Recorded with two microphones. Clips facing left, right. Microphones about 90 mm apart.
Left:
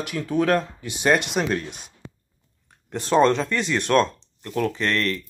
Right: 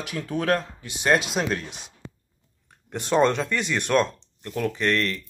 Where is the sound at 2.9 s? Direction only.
15° right (ahead or behind).